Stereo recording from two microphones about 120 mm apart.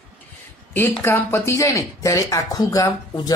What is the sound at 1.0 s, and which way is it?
Speech, 20° left (ahead or behind).